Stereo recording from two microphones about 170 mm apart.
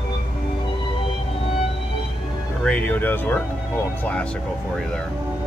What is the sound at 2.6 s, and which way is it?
Speech, 10° left (ahead or behind).